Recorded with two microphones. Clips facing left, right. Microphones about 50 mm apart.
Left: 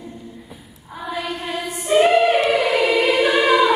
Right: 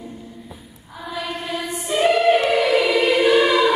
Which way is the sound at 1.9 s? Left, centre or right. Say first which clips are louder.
Left 2 dB; centre.